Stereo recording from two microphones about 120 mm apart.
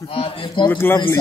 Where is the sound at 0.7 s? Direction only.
20° left (ahead or behind).